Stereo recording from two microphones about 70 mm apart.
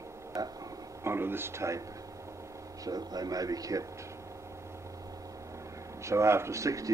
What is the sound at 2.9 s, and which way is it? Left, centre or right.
Speech, right.